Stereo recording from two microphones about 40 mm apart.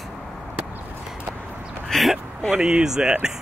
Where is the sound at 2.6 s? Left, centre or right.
Centre.